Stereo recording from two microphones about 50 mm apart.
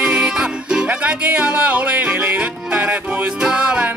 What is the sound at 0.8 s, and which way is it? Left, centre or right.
Music, right.